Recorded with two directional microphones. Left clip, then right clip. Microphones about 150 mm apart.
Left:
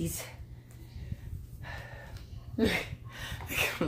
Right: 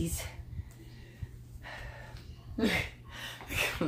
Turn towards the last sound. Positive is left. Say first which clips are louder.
# left 1 dB
turn(degrees=40)  # may be behind; listen again after turning